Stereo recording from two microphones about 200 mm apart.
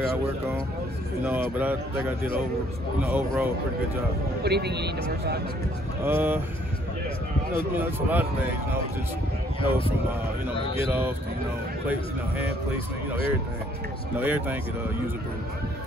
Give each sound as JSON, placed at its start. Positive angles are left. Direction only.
{"t": 1.6, "sound": "speech", "side_deg": -10}
{"t": 4.4, "sound": "a man's voice", "side_deg": -55}
{"t": 6.0, "sound": "speech", "side_deg": -10}
{"t": 7.7, "sound": "speech", "side_deg": -10}
{"t": 9.6, "sound": "speech", "side_deg": 25}
{"t": 10.9, "sound": "speech", "side_deg": -10}
{"t": 14.1, "sound": "speech", "side_deg": -10}